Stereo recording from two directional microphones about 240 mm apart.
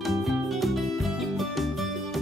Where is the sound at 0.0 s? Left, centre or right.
Centre.